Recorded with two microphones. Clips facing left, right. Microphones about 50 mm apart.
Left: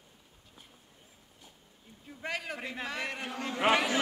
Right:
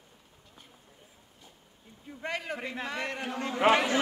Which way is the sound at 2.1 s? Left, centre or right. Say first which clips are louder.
Right 2 dB; centre.